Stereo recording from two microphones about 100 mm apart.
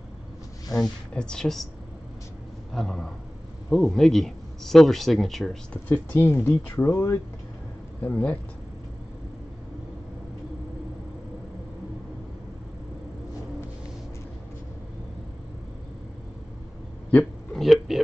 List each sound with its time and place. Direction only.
0.7 s speech: 5° left (ahead or behind)
2.7 s speech: 5° left (ahead or behind)
5.9 s speech: 25° left (ahead or behind)
8.0 s speech: 15° left (ahead or behind)
17.1 s a sound: 5° left (ahead or behind)